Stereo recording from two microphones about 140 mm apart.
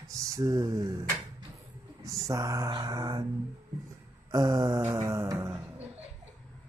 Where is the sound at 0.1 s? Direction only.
25° right (ahead or behind).